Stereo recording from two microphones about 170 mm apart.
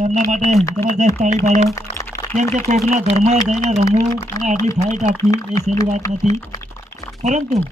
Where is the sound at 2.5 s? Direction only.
45° right (ahead or behind).